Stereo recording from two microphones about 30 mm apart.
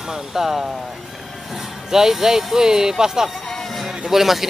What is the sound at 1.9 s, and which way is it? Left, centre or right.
Speech, centre.